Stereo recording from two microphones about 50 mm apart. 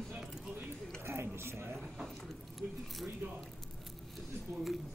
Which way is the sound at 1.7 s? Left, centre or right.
Centre.